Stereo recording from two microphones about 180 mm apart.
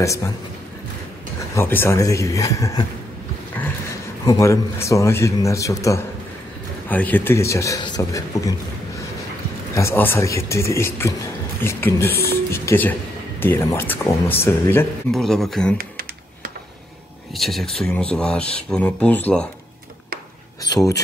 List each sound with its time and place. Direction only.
0.0 s a man's voice: 15° left (ahead or behind)
1.5 s a man's voice: 10° left (ahead or behind)
4.3 s a man's voice: 15° left (ahead or behind)
9.8 s a man's voice: 15° left (ahead or behind)
15.8 s computer keyboard: 55° right (ahead or behind)
17.3 s speech: centre (ahead or behind)
20.6 s speech: 20° left (ahead or behind)